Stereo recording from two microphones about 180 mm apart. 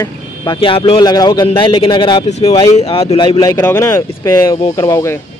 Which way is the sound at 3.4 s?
20° left (ahead or behind).